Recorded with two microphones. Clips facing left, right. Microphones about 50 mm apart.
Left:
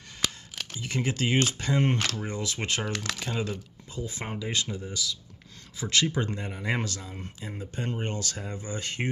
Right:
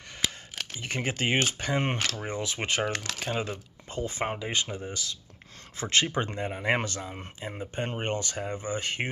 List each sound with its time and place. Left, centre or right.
0.7 s speech: right
3.9 s speech: right
4.2 s speech: right